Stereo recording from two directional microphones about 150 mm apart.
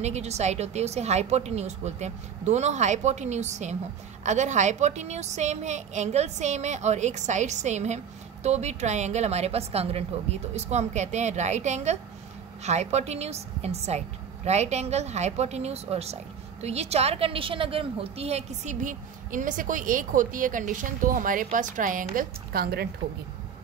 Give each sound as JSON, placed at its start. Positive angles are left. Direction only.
{"t": 0.0, "sound": "a woman's voice", "side_deg": -45}